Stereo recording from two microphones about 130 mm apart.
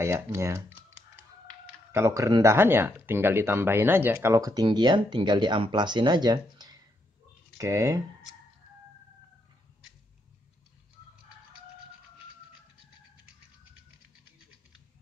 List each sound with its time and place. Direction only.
0.0 s speech: 20° right (ahead or behind)
1.9 s speech: 25° right (ahead or behind)